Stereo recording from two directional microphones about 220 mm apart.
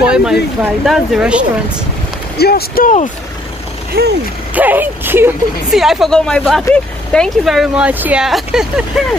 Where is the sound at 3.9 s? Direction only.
45° right (ahead or behind).